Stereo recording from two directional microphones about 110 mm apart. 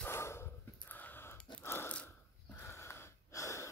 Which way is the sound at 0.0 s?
25° left (ahead or behind).